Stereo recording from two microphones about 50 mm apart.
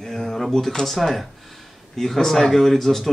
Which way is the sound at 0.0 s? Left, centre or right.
Centre.